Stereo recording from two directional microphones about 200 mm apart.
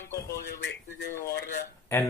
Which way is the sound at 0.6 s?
55° left (ahead or behind).